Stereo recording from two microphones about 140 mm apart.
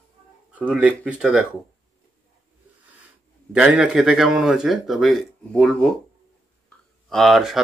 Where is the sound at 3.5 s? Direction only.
5° right (ahead or behind).